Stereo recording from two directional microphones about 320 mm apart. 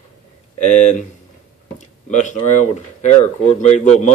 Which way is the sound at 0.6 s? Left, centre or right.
Left.